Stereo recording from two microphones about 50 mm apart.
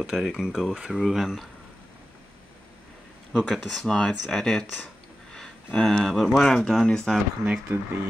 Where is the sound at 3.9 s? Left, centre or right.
Centre.